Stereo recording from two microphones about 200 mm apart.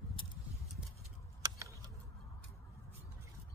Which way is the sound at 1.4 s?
15° right (ahead or behind).